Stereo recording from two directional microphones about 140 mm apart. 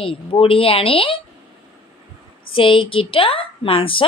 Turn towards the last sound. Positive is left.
turn(degrees=40)  # may be behind; listen again after turning